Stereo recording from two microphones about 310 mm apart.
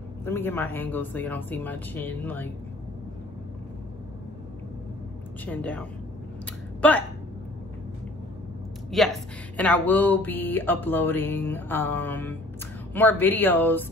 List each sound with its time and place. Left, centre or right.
0.2 s speech: centre
5.4 s speech: centre
8.9 s speech: centre